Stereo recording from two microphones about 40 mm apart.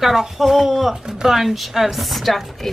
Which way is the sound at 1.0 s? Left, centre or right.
Centre.